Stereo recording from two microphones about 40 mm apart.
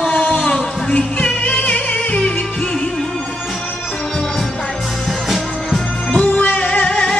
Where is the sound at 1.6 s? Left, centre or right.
Left.